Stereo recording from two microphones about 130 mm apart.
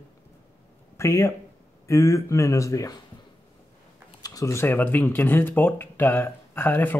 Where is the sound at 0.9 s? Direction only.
20° left (ahead or behind).